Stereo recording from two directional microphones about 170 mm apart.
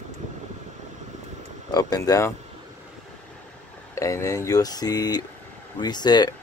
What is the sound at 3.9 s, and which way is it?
Speech, 15° left (ahead or behind).